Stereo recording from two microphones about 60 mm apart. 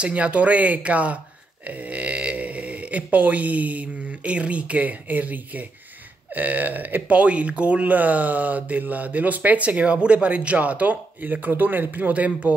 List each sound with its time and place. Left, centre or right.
0.0 s speech: right